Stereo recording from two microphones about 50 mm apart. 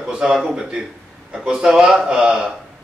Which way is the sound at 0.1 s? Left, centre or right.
Centre.